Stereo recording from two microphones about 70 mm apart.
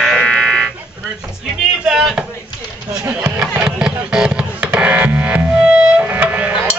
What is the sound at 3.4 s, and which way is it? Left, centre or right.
Music, centre.